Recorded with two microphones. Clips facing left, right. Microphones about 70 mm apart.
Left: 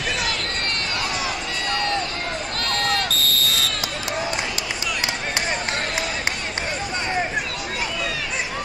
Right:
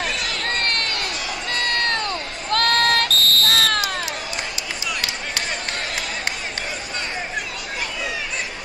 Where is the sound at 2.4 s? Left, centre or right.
Right.